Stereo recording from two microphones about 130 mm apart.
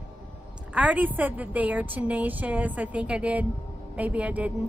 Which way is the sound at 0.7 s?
10° right (ahead or behind).